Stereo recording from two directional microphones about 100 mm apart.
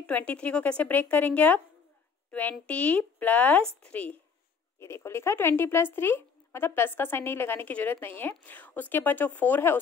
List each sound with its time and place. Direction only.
0.0 s speech: 15° left (ahead or behind)
2.6 s speech: 15° left (ahead or behind)
4.7 s speech: 25° left (ahead or behind)